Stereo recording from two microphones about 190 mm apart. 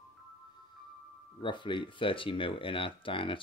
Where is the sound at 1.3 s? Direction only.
25° left (ahead or behind).